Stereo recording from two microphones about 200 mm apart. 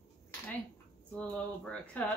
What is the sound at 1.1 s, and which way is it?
Speech, 5° left (ahead or behind).